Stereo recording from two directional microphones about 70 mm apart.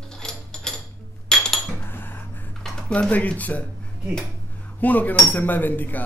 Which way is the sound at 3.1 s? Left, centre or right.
Left.